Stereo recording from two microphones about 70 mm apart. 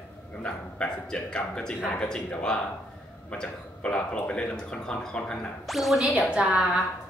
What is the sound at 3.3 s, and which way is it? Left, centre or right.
A man's voice, centre.